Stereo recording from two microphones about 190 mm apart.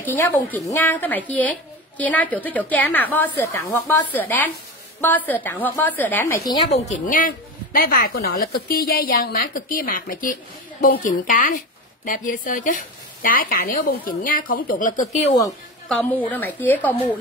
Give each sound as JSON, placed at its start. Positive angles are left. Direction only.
{"t": 0.0, "sound": "a woman's voice", "side_deg": 10}
{"t": 6.7, "sound": "a woman's voice", "side_deg": 40}
{"t": 15.9, "sound": "a woman's voice", "side_deg": 5}